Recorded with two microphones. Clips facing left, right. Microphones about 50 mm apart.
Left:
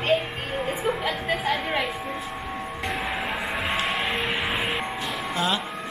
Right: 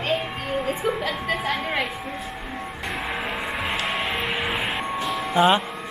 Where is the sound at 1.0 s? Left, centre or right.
Centre.